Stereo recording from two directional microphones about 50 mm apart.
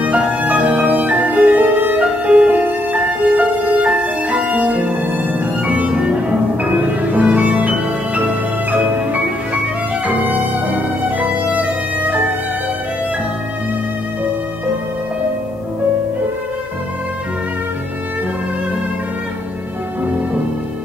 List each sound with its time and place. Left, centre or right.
0.5 s music: right
2.0 s music: right
2.6 s music: right
3.8 s music: right
7.1 s music: right
10.0 s music: right
11.1 s violin: right